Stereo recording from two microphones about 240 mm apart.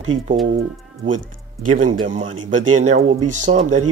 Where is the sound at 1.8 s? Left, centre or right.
Right.